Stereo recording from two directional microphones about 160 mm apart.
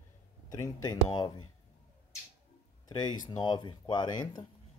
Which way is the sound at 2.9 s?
25° left (ahead or behind).